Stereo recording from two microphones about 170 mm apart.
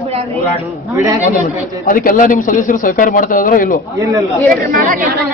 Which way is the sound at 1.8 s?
55° left (ahead or behind).